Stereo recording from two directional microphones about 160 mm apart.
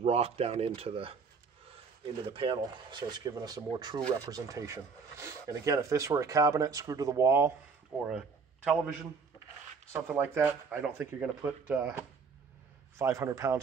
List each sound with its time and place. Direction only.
0.0 s speech: 40° right (ahead or behind)
2.2 s speech: 35° right (ahead or behind); by 7.5 s 15° right (ahead or behind)
8.0 s a man's voice: 5° right (ahead or behind); by 13.6 s 20° right (ahead or behind)